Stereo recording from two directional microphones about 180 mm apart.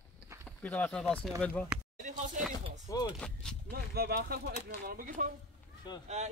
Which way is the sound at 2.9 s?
20° left (ahead or behind).